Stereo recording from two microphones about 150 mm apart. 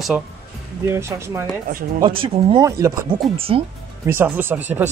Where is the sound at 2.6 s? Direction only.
20° right (ahead or behind).